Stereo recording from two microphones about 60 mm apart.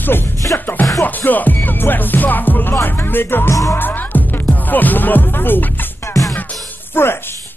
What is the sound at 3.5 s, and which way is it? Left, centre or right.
Music, left.